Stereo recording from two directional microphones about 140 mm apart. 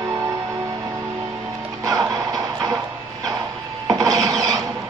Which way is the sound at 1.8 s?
25° right (ahead or behind).